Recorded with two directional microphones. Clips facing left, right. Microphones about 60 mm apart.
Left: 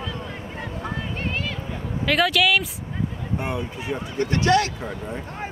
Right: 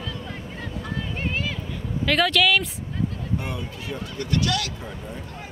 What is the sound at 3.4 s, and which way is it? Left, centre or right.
Speech, left.